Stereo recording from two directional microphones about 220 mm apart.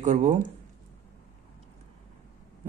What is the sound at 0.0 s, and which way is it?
Speech, 35° right (ahead or behind).